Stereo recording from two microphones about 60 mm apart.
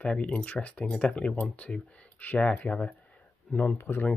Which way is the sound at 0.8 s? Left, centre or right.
Centre.